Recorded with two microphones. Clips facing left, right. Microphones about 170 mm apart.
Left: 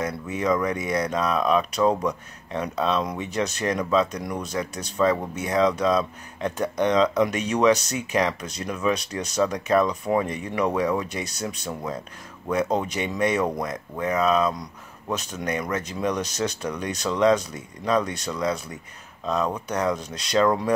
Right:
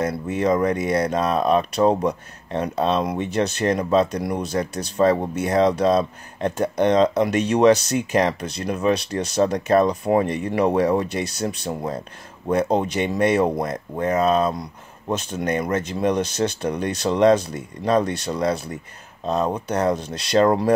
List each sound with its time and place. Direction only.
0.4 s speech: 35° right (ahead or behind)